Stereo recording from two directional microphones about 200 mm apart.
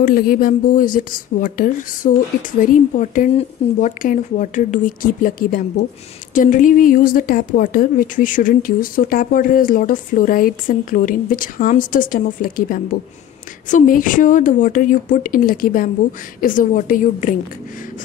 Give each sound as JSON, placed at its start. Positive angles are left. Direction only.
{"t": 0.0, "sound": "a woman's voice", "side_deg": 45}